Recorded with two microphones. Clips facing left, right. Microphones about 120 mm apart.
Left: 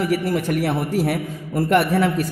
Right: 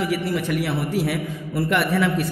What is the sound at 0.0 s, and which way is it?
A man's voice, 45° left (ahead or behind).